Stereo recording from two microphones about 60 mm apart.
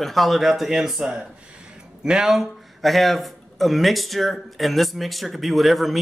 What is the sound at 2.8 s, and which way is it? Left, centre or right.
Speech, centre.